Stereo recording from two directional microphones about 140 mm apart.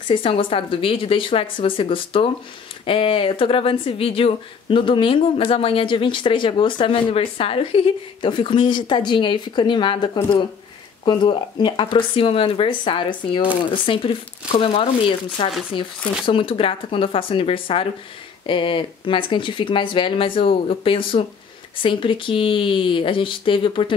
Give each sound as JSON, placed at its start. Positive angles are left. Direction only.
{"t": 0.1, "sound": "speech", "side_deg": 40}